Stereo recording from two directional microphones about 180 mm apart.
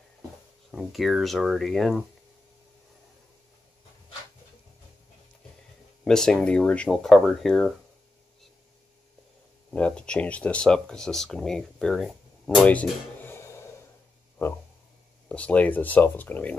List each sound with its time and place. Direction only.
0.7 s speech: centre (ahead or behind)
6.0 s speech: 5° left (ahead or behind)
9.7 s speech: 5° left (ahead or behind)
15.2 s speech: 5° left (ahead or behind)